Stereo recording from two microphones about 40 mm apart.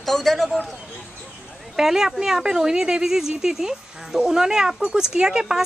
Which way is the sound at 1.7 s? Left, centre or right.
Centre.